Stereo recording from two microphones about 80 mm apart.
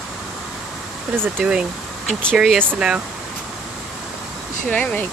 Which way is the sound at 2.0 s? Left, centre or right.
Centre.